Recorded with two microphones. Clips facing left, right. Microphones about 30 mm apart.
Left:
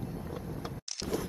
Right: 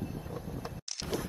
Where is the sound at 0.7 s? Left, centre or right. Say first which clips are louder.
Left 1 dB; right.